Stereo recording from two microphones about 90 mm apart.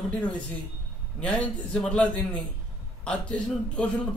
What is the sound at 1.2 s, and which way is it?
A man's voice, 10° left (ahead or behind).